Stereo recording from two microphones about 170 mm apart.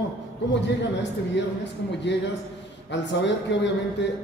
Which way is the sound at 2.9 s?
90° left.